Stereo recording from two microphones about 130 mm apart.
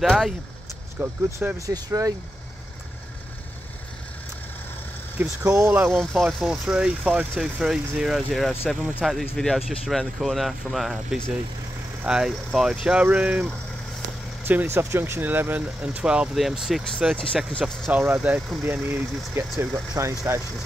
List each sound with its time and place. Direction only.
0.0 s speech: centre (ahead or behind)
1.0 s speech: 15° right (ahead or behind)
1.7 s speech: 25° right (ahead or behind)
5.4 s speech: 20° right (ahead or behind)
5.9 s speech: 5° right (ahead or behind)
17.6 s speech: 15° right (ahead or behind)